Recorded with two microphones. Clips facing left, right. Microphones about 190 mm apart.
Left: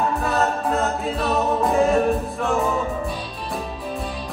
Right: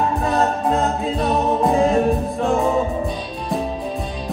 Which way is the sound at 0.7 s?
35° right (ahead or behind).